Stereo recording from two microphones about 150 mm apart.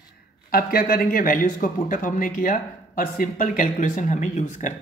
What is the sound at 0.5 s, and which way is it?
Speech, 75° left (ahead or behind).